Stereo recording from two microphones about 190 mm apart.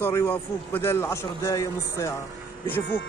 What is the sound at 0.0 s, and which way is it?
A man's voice, 10° left (ahead or behind).